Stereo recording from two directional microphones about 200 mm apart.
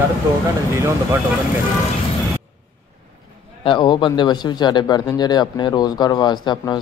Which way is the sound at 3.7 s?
25° left (ahead or behind).